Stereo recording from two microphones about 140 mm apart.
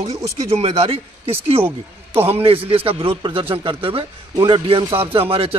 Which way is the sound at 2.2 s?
45° right (ahead or behind).